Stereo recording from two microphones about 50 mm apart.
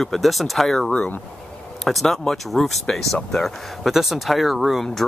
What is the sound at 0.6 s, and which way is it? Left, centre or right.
Speech, centre.